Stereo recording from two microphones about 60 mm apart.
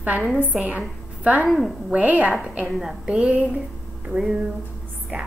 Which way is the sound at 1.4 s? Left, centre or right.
Centre.